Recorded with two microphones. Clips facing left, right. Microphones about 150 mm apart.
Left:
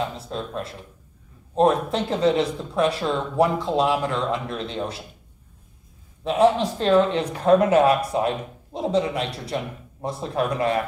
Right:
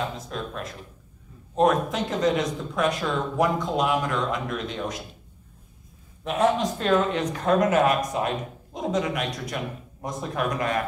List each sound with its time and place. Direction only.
0.2 s speech: 30° left (ahead or behind)
6.2 s speech: 30° left (ahead or behind)